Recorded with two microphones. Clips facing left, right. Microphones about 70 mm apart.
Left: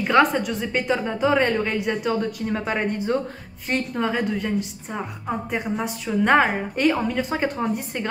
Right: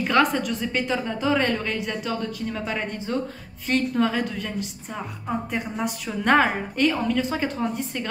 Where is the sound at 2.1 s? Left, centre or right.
Left.